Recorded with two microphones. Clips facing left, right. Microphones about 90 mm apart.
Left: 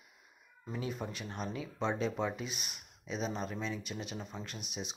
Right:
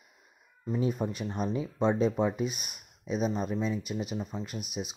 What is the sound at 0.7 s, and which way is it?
Speech, 20° right (ahead or behind).